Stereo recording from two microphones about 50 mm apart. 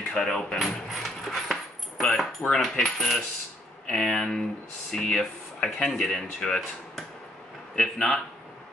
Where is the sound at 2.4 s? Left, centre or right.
Left.